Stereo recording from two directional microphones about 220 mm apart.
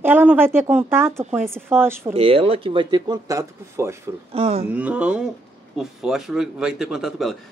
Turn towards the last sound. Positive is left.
turn(degrees=0)  # may be behind; listen again after turning